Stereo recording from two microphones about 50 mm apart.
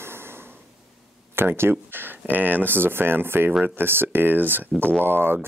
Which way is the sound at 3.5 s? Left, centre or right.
Centre.